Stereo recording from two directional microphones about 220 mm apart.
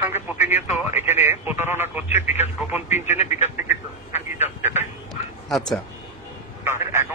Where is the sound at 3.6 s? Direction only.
10° right (ahead or behind).